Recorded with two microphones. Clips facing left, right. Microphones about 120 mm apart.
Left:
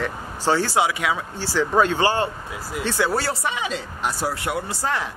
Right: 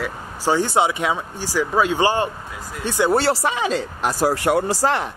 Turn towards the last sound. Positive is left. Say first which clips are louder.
# right 6 dB
turn(degrees=-90)